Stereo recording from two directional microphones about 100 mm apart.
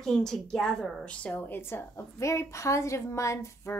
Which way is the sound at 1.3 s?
25° left (ahead or behind).